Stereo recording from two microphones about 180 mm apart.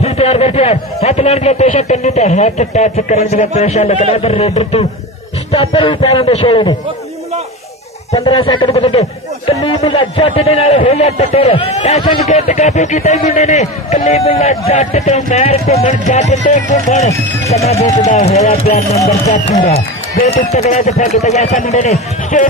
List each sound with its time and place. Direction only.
0.0 s a man's voice: 35° left (ahead or behind)
8.3 s a man's voice: 25° left (ahead or behind); by 22.5 s 40° left (ahead or behind)